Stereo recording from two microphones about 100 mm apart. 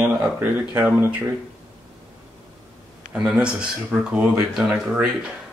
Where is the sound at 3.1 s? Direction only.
10° right (ahead or behind).